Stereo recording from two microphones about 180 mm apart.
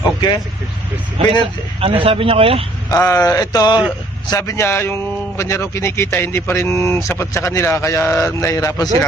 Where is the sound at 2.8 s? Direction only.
20° left (ahead or behind).